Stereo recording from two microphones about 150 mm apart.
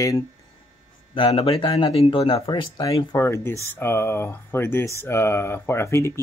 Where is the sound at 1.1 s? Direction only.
35° left (ahead or behind).